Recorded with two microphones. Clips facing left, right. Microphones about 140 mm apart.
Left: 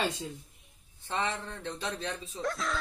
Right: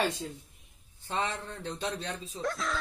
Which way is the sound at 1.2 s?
30° right (ahead or behind).